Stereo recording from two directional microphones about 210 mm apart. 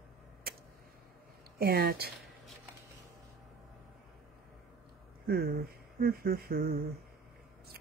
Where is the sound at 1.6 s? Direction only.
45° right (ahead or behind).